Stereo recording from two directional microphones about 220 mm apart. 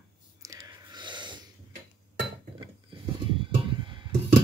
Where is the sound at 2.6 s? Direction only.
20° right (ahead or behind).